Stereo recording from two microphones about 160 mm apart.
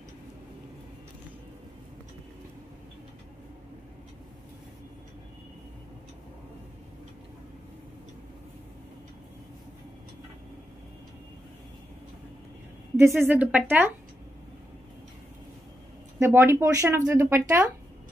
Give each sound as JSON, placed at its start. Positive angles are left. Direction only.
{"t": 12.9, "sound": "speech", "side_deg": -15}
{"t": 16.2, "sound": "speech", "side_deg": -15}